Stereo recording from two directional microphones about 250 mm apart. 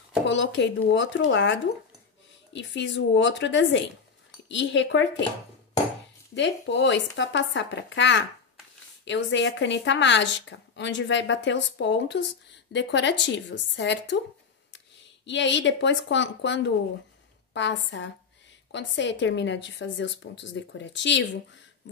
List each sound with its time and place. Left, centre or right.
0.3 s speech: left
6.3 s speech: left
15.2 s speech: left